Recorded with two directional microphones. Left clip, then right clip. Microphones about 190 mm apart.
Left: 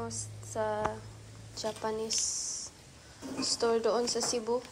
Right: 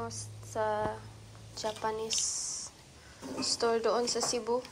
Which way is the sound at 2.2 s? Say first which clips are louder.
Left 1 dB; 30° left (ahead or behind).